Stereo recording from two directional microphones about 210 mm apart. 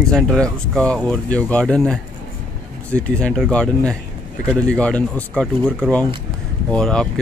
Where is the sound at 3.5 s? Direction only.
5° left (ahead or behind).